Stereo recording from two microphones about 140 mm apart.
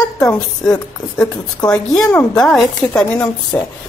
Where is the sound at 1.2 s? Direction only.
10° left (ahead or behind).